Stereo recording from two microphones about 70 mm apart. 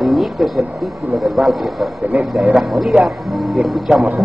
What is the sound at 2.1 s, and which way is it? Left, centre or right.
Speech, right.